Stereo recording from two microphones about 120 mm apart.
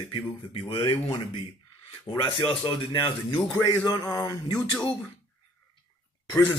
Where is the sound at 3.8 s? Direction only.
35° left (ahead or behind).